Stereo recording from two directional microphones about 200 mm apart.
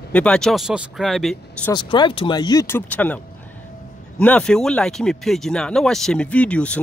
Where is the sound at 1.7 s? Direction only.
25° left (ahead or behind).